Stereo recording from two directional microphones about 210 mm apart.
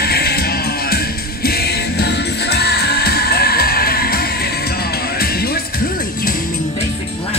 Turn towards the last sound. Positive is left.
turn(degrees=45)  # may be behind; listen again after turning